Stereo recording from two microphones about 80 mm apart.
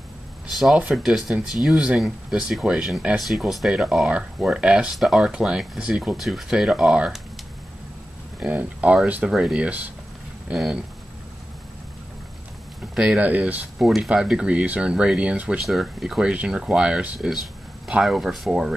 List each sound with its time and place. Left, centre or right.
0.5 s speech: centre
8.5 s speech: centre
10.5 s speech: centre
12.9 s speech: centre
13.2 s speech: centre
13.7 s speech: centre
15.6 s speech: centre